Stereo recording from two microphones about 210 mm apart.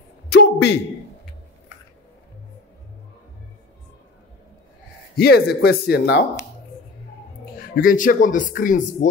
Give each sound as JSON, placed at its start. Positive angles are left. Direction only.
{"t": 0.3, "sound": "a sound", "side_deg": 55}
{"t": 5.1, "sound": "speech", "side_deg": 50}
{"t": 7.5, "sound": "speech", "side_deg": 40}